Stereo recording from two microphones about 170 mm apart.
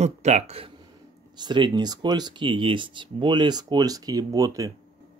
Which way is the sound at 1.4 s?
25° right (ahead or behind).